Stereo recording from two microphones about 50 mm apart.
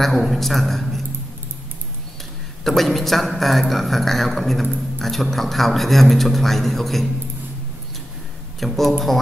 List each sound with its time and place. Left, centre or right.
0.0 s a man's voice: centre
2.6 s a man's voice: centre
8.5 s a man's voice: centre